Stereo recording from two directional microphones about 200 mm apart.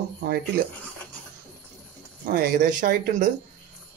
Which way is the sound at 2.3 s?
45° right (ahead or behind).